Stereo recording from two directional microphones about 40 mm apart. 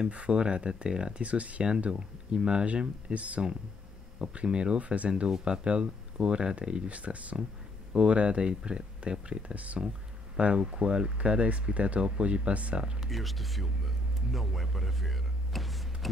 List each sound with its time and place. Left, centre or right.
0.1 s speech: right
1.2 s speech: right
1.9 s speech: right
4.3 s speech: right
6.9 s speech: right
9.5 s speech: right
10.3 s speech: right
13.1 s speech: centre